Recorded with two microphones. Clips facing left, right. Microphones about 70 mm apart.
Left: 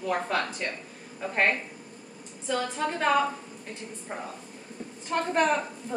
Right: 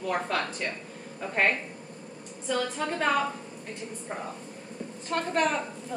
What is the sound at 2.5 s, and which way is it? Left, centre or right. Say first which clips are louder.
Speech: even; centre.